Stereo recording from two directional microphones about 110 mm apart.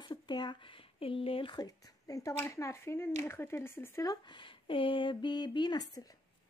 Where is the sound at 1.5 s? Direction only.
35° left (ahead or behind).